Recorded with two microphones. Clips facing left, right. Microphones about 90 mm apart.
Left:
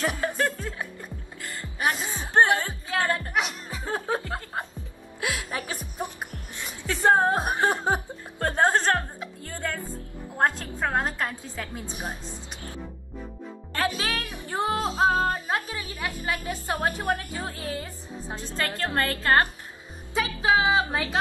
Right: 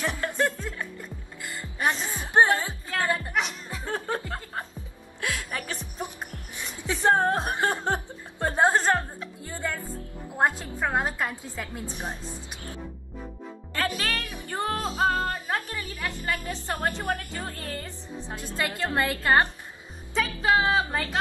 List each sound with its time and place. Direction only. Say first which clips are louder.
0.0 s music: left 1 dB; 10° left (ahead or behind)
1.8 s music: even; 10° left (ahead or behind)
2.1 s music: even; 5° right (ahead or behind); by 4.2 s 10° left (ahead or behind)
5.2 s music: left 1 dB; 15° left (ahead or behind)
7.2 s chuckle: left 2 dB; 10° left (ahead or behind)
8.5 s music: even; 5° right (ahead or behind)
13.7 s music: left 1 dB; 20° left (ahead or behind)
16.4 s a woman's voice: left 2 dB; 15° left (ahead or behind)
18.3 s a woman's voice: even; 5° right (ahead or behind)
20.2 s music: left 1 dB; 5° left (ahead or behind)